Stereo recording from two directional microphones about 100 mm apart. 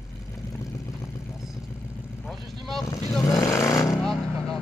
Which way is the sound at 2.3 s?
Centre (ahead or behind).